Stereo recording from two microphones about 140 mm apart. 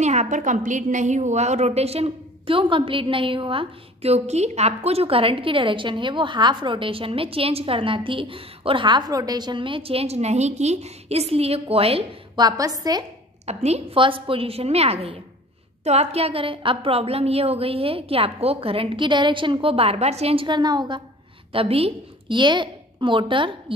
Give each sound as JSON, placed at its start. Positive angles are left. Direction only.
{"t": 0.0, "sound": "a woman's voice", "side_deg": -55}
{"t": 12.4, "sound": "a woman's voice", "side_deg": -25}
{"t": 13.5, "sound": "a woman's voice", "side_deg": -50}
{"t": 20.4, "sound": "a woman's voice", "side_deg": -30}
{"t": 21.5, "sound": "a woman's voice", "side_deg": -40}